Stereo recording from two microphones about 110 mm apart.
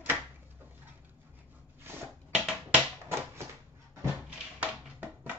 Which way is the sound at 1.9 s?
20° right (ahead or behind).